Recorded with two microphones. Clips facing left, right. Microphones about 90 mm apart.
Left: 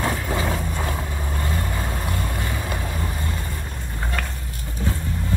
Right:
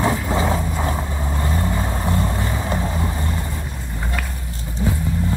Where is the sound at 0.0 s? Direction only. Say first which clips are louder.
Right 4 dB; 20° right (ahead or behind).